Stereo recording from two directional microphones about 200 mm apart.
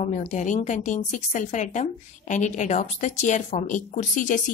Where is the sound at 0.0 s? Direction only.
35° left (ahead or behind).